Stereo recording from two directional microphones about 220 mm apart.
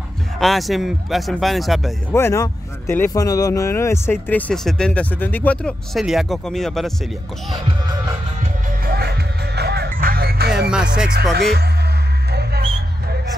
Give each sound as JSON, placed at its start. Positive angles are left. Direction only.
{"t": 0.4, "sound": "speech", "side_deg": 0}
{"t": 2.1, "sound": "speech", "side_deg": 10}
{"t": 8.6, "sound": "music", "side_deg": -45}
{"t": 10.7, "sound": "speech", "side_deg": -5}
{"t": 12.3, "sound": "music", "side_deg": -45}